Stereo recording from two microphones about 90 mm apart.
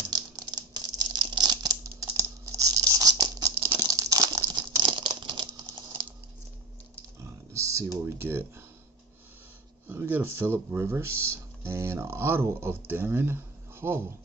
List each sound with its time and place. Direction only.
0.7 s a sound: 50° right (ahead or behind)
1.2 s crumpling: 55° right (ahead or behind)
4.7 s a sound: 65° right (ahead or behind)
7.5 s typing: 35° right (ahead or behind)
8.0 s speech: 25° right (ahead or behind)
9.8 s speech: 20° right (ahead or behind)